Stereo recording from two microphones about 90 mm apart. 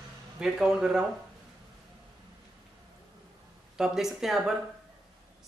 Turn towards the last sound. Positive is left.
turn(degrees=-5)  # may be behind; listen again after turning